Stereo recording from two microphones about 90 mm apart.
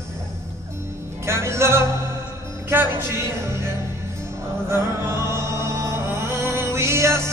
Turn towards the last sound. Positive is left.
turn(degrees=-30)  # may be behind; listen again after turning